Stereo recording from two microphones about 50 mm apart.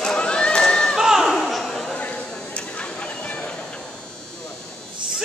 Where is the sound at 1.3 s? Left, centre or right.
Centre.